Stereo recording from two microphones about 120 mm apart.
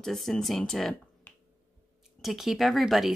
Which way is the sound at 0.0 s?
5° left (ahead or behind).